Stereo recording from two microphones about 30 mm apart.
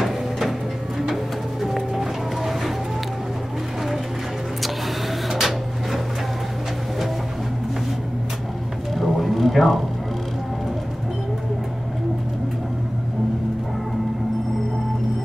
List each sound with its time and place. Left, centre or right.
0.0 s music: centre
5.3 s drawer open or close: centre
8.9 s a sound: centre